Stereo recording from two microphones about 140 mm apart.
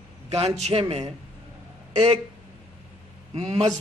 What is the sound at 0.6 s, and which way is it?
Speech, 45° right (ahead or behind).